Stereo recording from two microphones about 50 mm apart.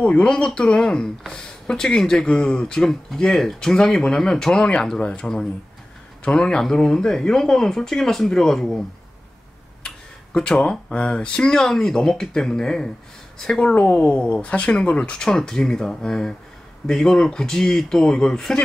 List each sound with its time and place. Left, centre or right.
0.0 s speech: left
2.8 s speech: centre
9.8 s tick-tock: centre
10.6 s speech: left
13.6 s speech: left